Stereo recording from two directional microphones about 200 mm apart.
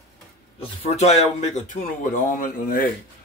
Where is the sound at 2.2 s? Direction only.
40° left (ahead or behind).